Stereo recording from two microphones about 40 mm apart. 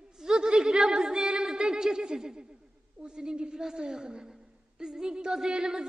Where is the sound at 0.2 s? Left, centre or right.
Centre.